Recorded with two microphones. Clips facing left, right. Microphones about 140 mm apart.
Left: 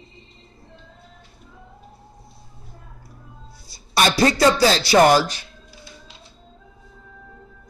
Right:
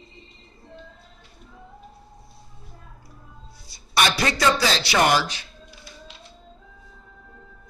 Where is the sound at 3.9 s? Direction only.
35° left (ahead or behind).